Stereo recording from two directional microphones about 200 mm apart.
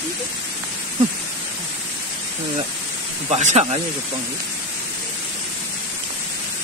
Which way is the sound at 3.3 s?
35° right (ahead or behind).